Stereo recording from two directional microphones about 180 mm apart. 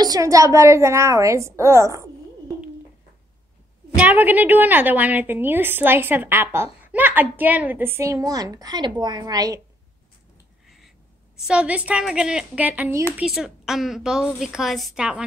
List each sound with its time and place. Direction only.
0.0 s a woman's voice: 20° right (ahead or behind)
4.0 s a woman's voice: 10° right (ahead or behind)
11.4 s a woman's voice: 5° right (ahead or behind)